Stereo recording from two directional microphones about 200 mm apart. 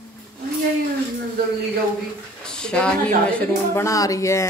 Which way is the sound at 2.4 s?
5° left (ahead or behind).